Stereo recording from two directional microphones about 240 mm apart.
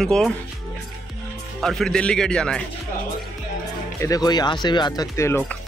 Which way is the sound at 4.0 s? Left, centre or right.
Centre.